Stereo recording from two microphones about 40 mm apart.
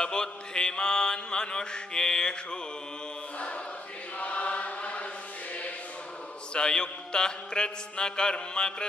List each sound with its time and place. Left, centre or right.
0.0 s mantra: centre
4.2 s chant: left
6.5 s mantra: left